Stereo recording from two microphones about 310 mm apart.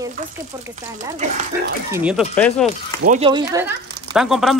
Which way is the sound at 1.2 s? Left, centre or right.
Right.